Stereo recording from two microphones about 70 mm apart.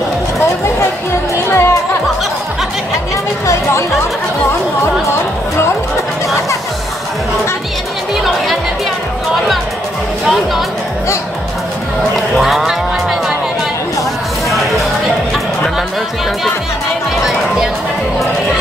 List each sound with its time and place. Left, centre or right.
1.5 s music: left
12.4 s music: centre